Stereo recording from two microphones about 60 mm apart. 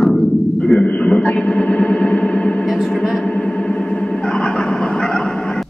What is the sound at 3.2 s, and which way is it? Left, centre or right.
Vehicle, centre.